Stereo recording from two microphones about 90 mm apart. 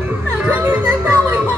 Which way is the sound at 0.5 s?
20° right (ahead or behind).